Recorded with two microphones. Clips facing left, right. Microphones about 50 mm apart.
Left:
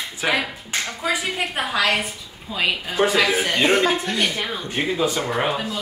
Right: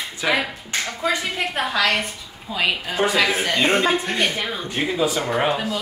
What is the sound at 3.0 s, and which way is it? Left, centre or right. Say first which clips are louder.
Speech: left 2 dB; left.